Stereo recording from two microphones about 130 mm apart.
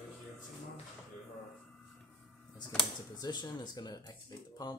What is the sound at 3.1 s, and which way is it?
Speech, 30° left (ahead or behind).